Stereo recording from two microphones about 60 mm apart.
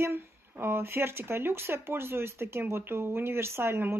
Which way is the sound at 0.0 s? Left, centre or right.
Right.